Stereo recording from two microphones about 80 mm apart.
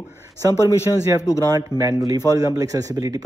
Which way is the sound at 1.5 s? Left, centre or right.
Right.